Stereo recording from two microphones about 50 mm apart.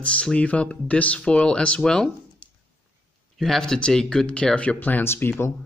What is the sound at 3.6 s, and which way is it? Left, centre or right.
Speech, centre.